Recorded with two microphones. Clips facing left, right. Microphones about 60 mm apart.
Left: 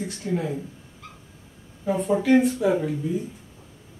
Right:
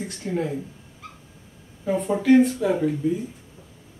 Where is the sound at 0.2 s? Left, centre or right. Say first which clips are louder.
Even; centre.